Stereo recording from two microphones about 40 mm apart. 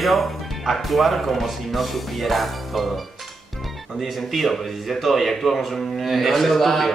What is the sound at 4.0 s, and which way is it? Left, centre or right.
A man's voice, centre.